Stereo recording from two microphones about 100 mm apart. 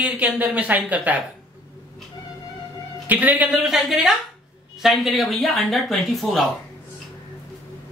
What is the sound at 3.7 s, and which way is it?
Speech, 5° right (ahead or behind).